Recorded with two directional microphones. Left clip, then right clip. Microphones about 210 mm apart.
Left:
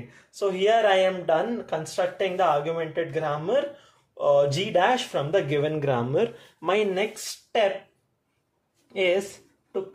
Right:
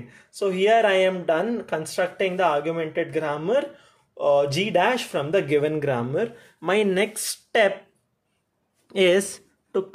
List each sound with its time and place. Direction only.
0.4 s speech: 30° right (ahead or behind)
5.9 s speech: 5° right (ahead or behind)
6.6 s speech: 20° right (ahead or behind)
8.8 s speech: 45° right (ahead or behind)